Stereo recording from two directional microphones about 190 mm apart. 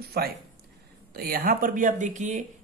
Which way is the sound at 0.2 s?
55° right (ahead or behind).